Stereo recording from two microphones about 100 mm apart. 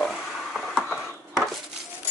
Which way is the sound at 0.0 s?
5° right (ahead or behind).